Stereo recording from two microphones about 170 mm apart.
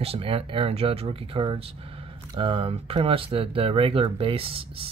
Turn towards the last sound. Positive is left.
turn(degrees=-35)  # may be behind; listen again after turning